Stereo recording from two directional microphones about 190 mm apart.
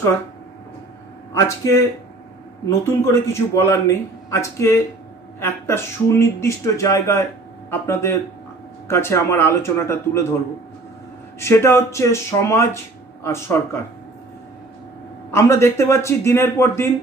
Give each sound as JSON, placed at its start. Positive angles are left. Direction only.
{"t": 1.3, "sound": "speech", "side_deg": 15}
{"t": 3.0, "sound": "speech", "side_deg": 15}
{"t": 11.3, "sound": "speech", "side_deg": 15}
{"t": 15.3, "sound": "speech", "side_deg": 15}